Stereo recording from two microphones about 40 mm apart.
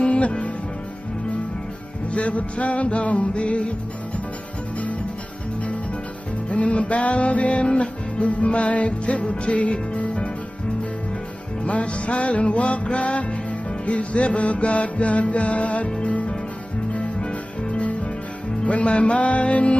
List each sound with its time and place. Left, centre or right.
0.0 s music: left
2.1 s music: left
6.5 s music: left
11.6 s music: left
18.6 s music: left